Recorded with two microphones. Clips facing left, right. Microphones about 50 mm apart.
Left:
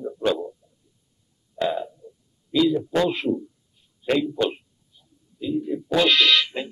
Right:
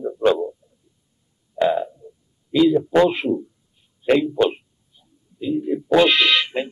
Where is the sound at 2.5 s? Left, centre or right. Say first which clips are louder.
Right 5 dB; centre.